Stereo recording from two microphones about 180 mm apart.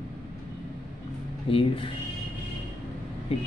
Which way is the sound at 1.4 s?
30° left (ahead or behind).